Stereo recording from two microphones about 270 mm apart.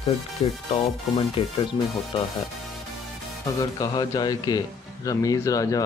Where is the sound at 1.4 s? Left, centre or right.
Left.